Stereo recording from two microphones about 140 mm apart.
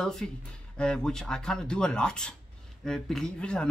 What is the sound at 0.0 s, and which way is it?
Speech, 5° left (ahead or behind).